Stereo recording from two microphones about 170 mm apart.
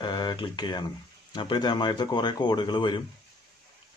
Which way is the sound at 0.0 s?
25° left (ahead or behind).